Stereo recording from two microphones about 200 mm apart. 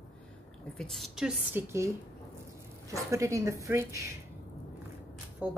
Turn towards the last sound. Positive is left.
turn(degrees=-10)  # may be behind; listen again after turning